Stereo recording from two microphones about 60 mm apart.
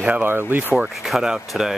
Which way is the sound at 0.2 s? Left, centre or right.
Right.